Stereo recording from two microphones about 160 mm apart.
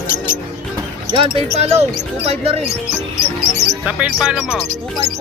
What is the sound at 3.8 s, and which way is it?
Speech, 5° right (ahead or behind).